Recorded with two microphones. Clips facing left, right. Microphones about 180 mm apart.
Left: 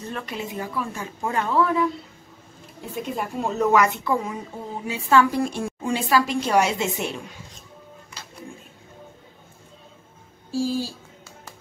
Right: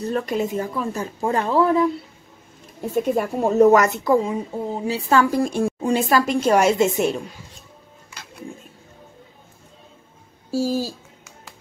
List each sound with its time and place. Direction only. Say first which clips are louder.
0.0 s a woman's voice: right 9 dB; 40° right (ahead or behind)
2.9 s a woman's voice: right 8 dB; 45° right (ahead or behind)
10.5 s a woman's voice: right 3 dB; 40° right (ahead or behind)